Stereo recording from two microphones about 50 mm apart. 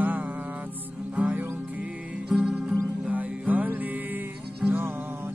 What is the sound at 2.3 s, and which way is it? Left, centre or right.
Music, centre.